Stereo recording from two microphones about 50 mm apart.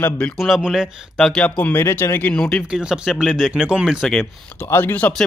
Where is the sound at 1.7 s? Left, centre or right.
Left.